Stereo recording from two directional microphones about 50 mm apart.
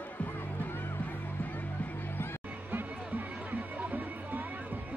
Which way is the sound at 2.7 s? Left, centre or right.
Right.